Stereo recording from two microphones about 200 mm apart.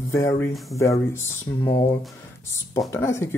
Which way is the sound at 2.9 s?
15° left (ahead or behind).